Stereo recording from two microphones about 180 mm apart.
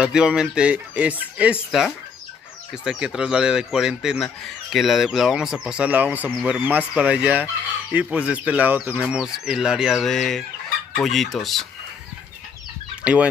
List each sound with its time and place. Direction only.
0.0 s speech: 5° right (ahead or behind)
13.0 s speech: 5° right (ahead or behind)